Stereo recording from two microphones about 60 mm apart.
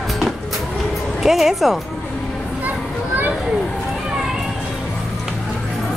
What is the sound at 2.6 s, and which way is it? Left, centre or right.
Children playing, right.